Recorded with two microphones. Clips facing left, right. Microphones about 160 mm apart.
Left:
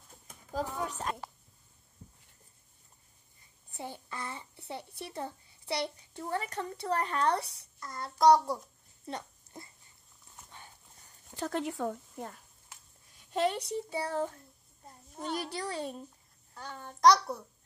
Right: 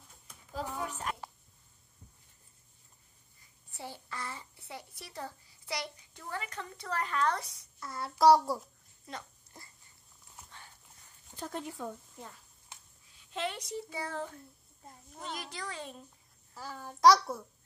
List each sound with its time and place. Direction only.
0.3 s a sound: 40° left (ahead or behind)
0.8 s a child's voice: 35° left (ahead or behind)
3.7 s a child's voice: 20° left (ahead or behind)
7.8 s a child's voice: 5° right (ahead or behind)
9.0 s a sound: 25° left (ahead or behind)
11.3 s speech: 75° left (ahead or behind); by 12.4 s 60° left (ahead or behind)
13.2 s a child's voice: 40° left (ahead or behind)
15.5 s a child's voice: 35° left (ahead or behind)
16.5 s a child's voice: 5° right (ahead or behind)